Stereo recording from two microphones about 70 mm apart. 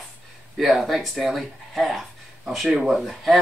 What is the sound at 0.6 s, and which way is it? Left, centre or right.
Speech, centre.